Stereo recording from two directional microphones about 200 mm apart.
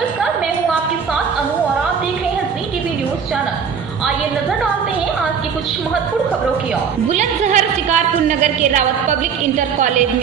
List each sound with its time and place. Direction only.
7.1 s a woman's voice: 35° right (ahead or behind)